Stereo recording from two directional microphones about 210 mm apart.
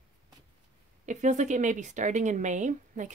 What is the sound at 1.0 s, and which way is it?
Speech, 35° right (ahead or behind).